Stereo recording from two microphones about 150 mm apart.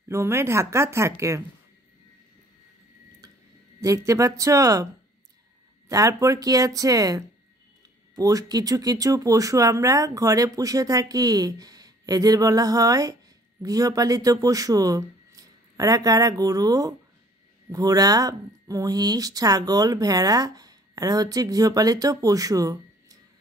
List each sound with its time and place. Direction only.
0.1 s speech: 20° right (ahead or behind)
3.8 s speech: 20° right (ahead or behind)
5.9 s speech: 20° right (ahead or behind)